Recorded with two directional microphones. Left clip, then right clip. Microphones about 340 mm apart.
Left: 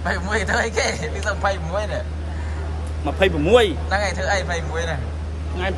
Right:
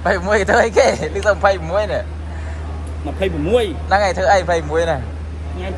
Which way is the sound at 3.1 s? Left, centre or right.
Centre.